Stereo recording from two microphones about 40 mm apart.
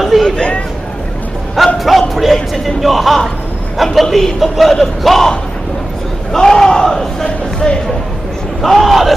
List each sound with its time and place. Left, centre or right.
0.1 s a man's voice: centre
1.8 s a man's voice: centre
6.3 s speech: centre
8.5 s a man's voice: centre